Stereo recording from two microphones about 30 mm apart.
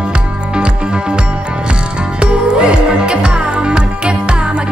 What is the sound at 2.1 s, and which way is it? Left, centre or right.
Music, right.